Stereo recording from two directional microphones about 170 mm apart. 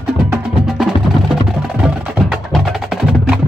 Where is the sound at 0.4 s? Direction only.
5° right (ahead or behind).